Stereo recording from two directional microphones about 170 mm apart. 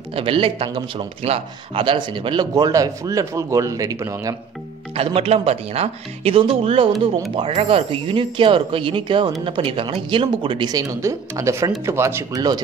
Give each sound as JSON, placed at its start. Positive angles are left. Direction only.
{"t": 0.1, "sound": "speech", "side_deg": -30}
{"t": 4.9, "sound": "speech", "side_deg": -35}